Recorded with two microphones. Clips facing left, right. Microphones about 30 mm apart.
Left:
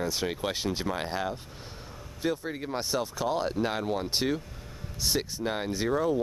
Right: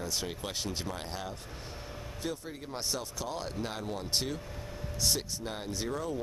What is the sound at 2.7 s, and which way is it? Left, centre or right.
Speech, centre.